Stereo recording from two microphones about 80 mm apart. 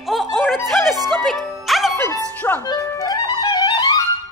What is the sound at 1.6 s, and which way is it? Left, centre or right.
Music, centre.